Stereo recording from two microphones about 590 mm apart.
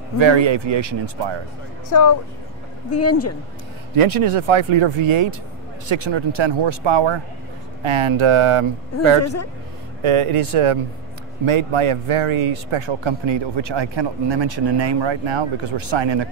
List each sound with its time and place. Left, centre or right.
0.2 s speech: right
1.9 s speech: left
3.9 s speech: right
9.2 s speech: left
10.0 s speech: right